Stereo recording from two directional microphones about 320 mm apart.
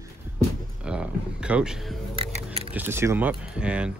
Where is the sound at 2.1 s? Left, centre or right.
Centre.